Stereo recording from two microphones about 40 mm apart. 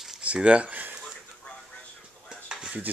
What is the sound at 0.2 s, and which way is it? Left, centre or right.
Speech, right.